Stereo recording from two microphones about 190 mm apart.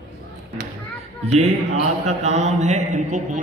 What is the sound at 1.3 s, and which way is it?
A man's voice, 35° right (ahead or behind).